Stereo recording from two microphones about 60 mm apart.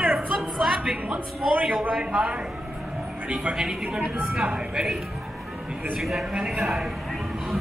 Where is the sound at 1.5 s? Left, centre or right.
Right.